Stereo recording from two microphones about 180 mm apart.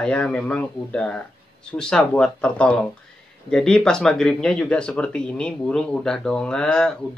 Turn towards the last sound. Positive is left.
turn(degrees=5)  # may be behind; listen again after turning